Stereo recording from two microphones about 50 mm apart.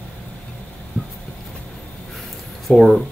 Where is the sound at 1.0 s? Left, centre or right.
Left.